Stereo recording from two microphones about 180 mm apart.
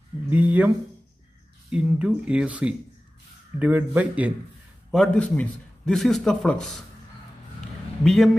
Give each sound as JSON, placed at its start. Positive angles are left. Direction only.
{"t": 0.3, "sound": "speech", "side_deg": -10}
{"t": 1.7, "sound": "speech", "side_deg": -5}
{"t": 4.9, "sound": "a man's voice", "side_deg": 5}
{"t": 8.0, "sound": "a man's voice", "side_deg": 0}